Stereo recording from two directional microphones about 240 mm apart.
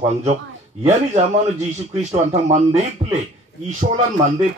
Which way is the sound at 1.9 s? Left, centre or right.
Right.